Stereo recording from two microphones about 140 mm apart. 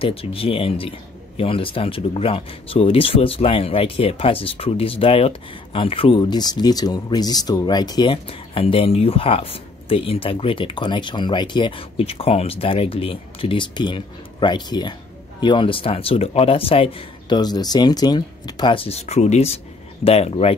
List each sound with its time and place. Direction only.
0.0 s speech: 40° left (ahead or behind)